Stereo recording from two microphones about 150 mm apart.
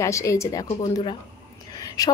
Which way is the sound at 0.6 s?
30° left (ahead or behind).